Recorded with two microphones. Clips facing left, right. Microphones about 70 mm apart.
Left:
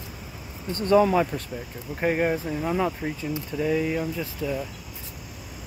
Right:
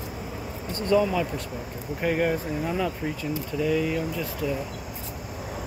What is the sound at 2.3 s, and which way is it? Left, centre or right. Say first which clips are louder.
Speech: left 1 dB; centre.